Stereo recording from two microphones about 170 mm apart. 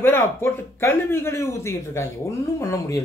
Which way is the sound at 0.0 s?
15° left (ahead or behind).